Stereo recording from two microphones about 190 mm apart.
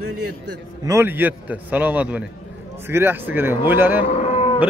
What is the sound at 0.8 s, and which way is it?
A man's voice, 15° right (ahead or behind).